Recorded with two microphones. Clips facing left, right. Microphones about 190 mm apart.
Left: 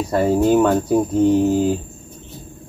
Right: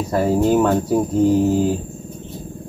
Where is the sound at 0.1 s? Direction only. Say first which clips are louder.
Left 1 dB; 5° right (ahead or behind).